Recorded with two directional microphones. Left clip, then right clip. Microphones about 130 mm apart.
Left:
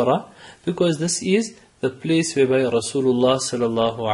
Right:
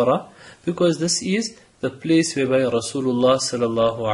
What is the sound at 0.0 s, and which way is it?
Speech, 35° left (ahead or behind).